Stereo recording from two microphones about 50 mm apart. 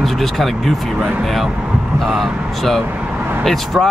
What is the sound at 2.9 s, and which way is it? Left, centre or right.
Vehicle, right.